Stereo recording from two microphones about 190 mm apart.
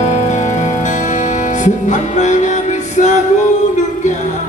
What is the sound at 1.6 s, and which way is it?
Music, 40° left (ahead or behind).